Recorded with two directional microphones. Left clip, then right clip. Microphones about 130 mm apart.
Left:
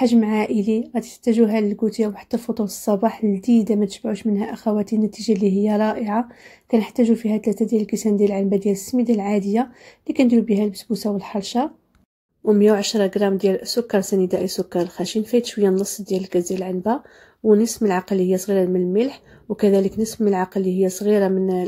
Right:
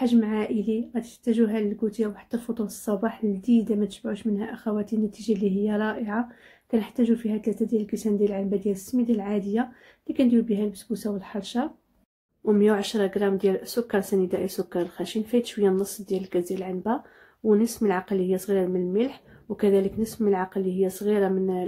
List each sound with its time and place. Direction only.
0.0 s a woman's voice: 50° left (ahead or behind)
12.4 s speech: 25° left (ahead or behind)